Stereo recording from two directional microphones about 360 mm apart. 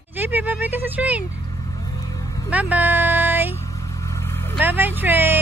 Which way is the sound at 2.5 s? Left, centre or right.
Centre.